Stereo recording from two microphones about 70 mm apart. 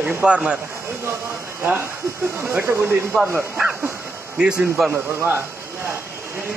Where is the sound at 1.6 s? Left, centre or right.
Right.